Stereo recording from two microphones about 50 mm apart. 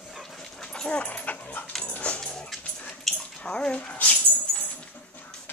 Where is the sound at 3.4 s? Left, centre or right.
Left.